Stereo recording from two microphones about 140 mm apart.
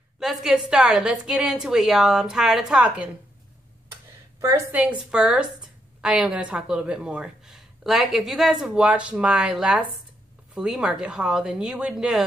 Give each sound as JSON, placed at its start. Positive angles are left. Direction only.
{"t": 0.2, "sound": "a woman's voice", "side_deg": 0}
{"t": 4.4, "sound": "a woman's voice", "side_deg": -20}
{"t": 4.7, "sound": "a woman's voice", "side_deg": -10}